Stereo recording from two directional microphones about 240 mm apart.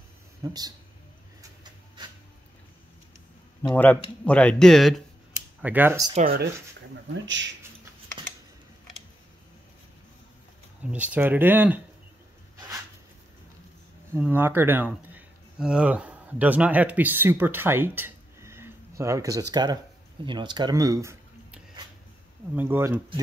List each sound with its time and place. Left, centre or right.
0.4 s speech: centre
3.6 s speech: centre
6.1 s speech: right
7.2 s speech: right
10.8 s speech: centre
14.1 s speech: centre
20.2 s a sound: centre
22.6 s speech: centre